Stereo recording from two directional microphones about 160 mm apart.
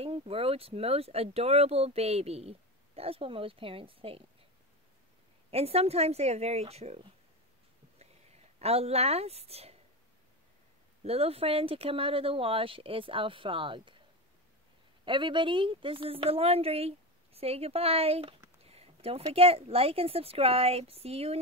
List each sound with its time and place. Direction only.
0.0 s speech: 35° right (ahead or behind)
5.5 s speech: 40° right (ahead or behind)
8.5 s speech: 40° right (ahead or behind)
11.1 s speech: 40° right (ahead or behind)
15.0 s speech: 30° right (ahead or behind)
18.6 s a sound: 40° right (ahead or behind)
19.3 s speech: 35° right (ahead or behind)